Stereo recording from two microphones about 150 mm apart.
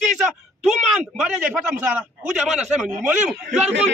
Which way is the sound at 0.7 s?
5° right (ahead or behind).